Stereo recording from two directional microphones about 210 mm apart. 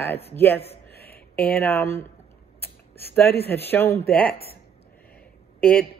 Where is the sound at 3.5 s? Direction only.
10° left (ahead or behind).